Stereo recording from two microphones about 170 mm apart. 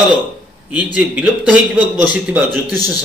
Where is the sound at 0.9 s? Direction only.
5° right (ahead or behind).